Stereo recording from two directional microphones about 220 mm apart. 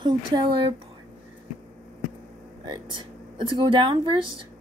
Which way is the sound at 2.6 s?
20° right (ahead or behind).